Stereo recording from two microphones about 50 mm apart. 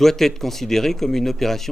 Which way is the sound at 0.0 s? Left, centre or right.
Centre.